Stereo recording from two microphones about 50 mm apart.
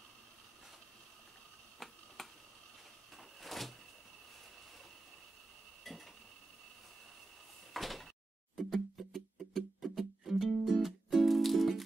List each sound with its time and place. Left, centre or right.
1.8 s tick-tock: centre
3.2 s door: centre
5.9 s a sound: centre
7.7 s door: centre
8.5 s music: centre